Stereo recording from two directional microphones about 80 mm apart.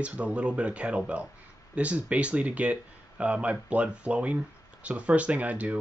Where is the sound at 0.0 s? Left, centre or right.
Centre.